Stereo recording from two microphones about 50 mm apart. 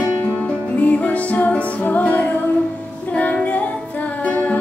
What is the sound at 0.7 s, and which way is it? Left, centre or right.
Music, left.